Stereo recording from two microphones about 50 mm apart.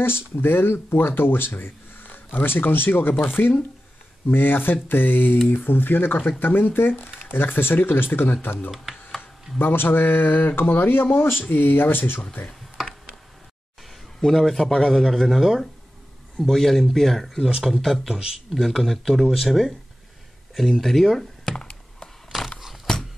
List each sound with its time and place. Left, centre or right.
0.0 s speech: left
14.2 s speech: centre
22.3 s a sound: centre